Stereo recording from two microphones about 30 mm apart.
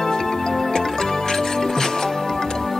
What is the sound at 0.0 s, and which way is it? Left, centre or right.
Music, centre.